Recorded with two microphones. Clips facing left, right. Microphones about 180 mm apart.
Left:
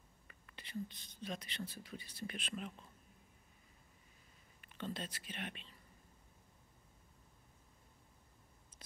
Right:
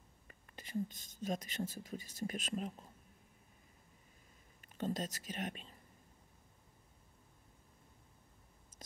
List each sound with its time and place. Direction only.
0.3 s speech: 40° right (ahead or behind)
4.7 s speech: 45° right (ahead or behind)